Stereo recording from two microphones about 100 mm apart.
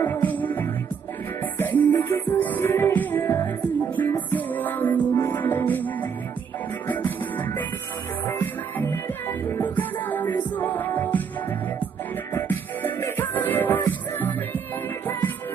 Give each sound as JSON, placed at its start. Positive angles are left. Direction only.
{"t": 0.0, "sound": "music", "side_deg": 20}
{"t": 12.4, "sound": "music", "side_deg": 20}